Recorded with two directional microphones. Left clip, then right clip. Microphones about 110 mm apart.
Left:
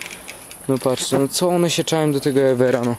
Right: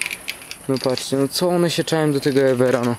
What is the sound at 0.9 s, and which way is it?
Speech, 15° left (ahead or behind).